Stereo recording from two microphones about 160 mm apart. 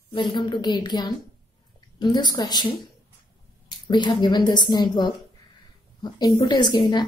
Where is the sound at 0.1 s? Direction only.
30° left (ahead or behind).